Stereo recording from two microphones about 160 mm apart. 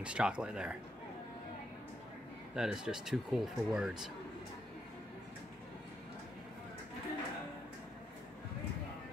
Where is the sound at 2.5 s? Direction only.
5° right (ahead or behind).